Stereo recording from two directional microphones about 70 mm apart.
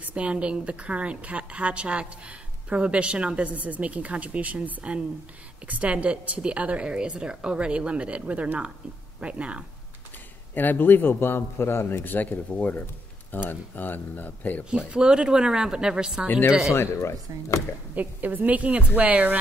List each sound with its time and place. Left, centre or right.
0.0 s a woman's voice: centre
10.5 s a man's voice: left
14.6 s a woman's voice: centre
16.7 s speech: left
17.9 s a woman's voice: right